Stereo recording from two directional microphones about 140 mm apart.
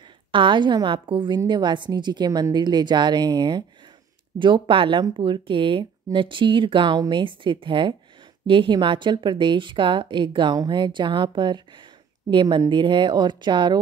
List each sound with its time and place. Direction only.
0.3 s a woman's voice: 35° right (ahead or behind)